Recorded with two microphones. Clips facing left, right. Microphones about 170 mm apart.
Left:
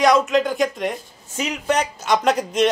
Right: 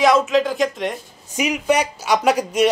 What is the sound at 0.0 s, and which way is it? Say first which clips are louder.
Speech: right 1 dB; centre (ahead or behind).